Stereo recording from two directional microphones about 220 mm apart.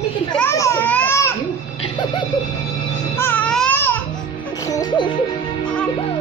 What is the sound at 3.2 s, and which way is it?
Speech, 10° left (ahead or behind).